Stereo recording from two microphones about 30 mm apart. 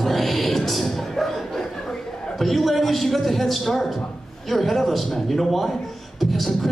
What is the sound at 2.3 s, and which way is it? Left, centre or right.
Speech, centre.